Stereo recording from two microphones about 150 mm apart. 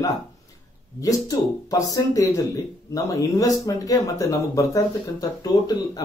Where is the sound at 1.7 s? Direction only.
25° left (ahead or behind).